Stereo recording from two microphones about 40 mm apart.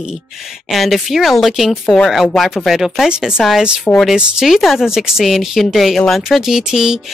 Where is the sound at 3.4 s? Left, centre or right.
Centre.